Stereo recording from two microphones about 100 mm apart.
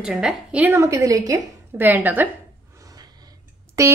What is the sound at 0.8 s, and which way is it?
Speech, 30° right (ahead or behind).